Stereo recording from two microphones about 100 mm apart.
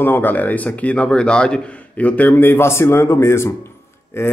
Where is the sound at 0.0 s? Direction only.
20° left (ahead or behind).